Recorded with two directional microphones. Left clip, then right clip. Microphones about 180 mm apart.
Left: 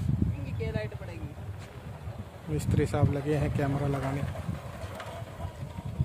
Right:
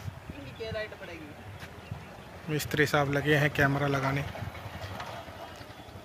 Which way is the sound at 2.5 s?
5° left (ahead or behind).